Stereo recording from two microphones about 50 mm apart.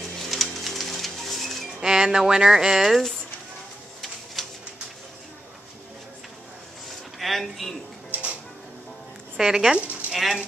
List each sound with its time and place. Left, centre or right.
0.0 s music: centre
1.8 s speech: centre
4.4 s pigeon: centre
7.2 s speech: centre
9.4 s speech: centre
9.8 s a sound: right
10.1 s speech: centre